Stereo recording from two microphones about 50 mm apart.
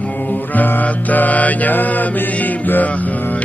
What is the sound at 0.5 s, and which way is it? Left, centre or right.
Mantra, left.